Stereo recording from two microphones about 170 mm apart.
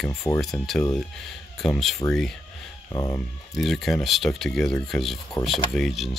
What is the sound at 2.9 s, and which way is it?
Speech, 20° left (ahead or behind).